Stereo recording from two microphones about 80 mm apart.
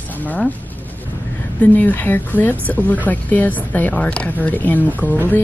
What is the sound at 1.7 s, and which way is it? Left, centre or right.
Speech, left.